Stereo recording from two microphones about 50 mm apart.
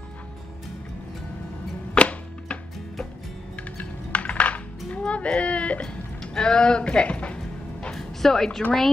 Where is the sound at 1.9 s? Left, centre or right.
Left.